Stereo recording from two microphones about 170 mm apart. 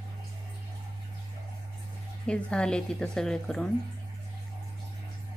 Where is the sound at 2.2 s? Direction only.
5° left (ahead or behind).